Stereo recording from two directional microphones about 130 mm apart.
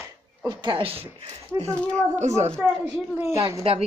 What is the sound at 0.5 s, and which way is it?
Speech, 40° right (ahead or behind).